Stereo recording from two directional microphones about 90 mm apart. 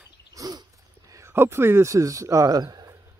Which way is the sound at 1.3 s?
25° right (ahead or behind).